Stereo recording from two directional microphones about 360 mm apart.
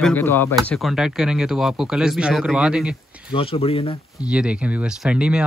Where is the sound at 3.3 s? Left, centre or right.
Centre.